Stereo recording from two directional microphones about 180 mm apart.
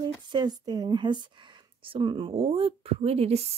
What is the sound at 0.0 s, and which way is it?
Speech, 25° right (ahead or behind).